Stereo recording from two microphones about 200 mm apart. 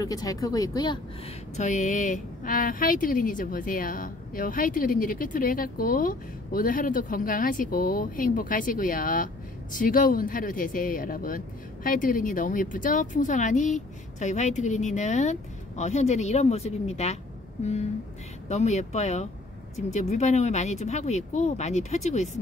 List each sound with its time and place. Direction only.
0.0 s speech: 20° left (ahead or behind)
1.6 s a woman's voice: 35° left (ahead or behind)
18.5 s speech: 35° left (ahead or behind)